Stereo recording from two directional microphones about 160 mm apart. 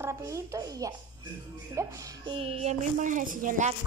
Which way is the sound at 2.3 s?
35° right (ahead or behind).